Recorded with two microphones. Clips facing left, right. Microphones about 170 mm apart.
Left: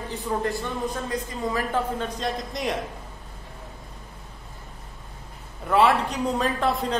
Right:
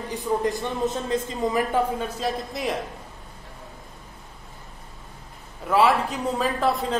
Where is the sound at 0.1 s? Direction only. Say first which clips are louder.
Right 3 dB; 15° right (ahead or behind).